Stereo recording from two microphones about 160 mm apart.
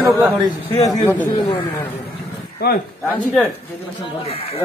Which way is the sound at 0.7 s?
20° left (ahead or behind).